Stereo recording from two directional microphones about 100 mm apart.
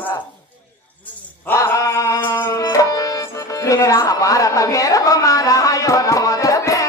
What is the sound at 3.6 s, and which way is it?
A woman's voice, 35° left (ahead or behind).